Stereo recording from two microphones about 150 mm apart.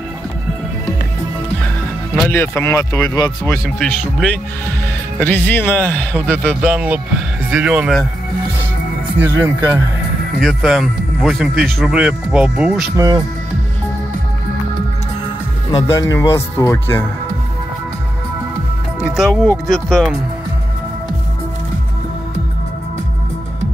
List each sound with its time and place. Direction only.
2.6 s speech: 20° left (ahead or behind)
3.8 s speech: 5° left (ahead or behind)
6.5 s speech: 10° right (ahead or behind)
9.2 s speech: 15° right (ahead or behind)
10.4 s speech: centre (ahead or behind)
12.9 s speech: 25° right (ahead or behind)
15.7 s speech: 25° left (ahead or behind)
18.9 s speech: 5° right (ahead or behind)